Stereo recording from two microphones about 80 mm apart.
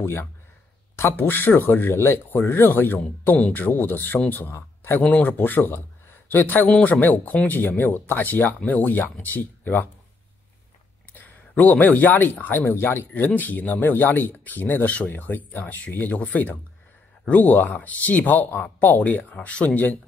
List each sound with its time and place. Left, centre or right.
0.0 s a man's voice: left
5.0 s speech: centre
11.1 s speech: left